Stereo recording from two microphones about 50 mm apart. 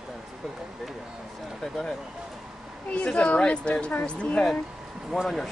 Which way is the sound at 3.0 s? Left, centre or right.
Left.